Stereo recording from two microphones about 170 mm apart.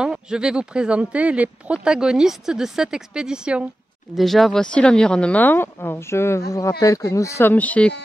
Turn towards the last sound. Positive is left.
turn(degrees=10)  # may be behind; listen again after turning